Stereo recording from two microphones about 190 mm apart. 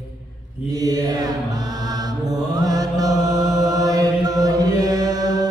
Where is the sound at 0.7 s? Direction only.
20° right (ahead or behind).